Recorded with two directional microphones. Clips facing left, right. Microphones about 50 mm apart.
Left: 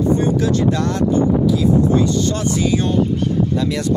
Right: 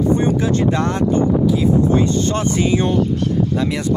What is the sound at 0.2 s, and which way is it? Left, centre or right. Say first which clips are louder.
Speech: even; right.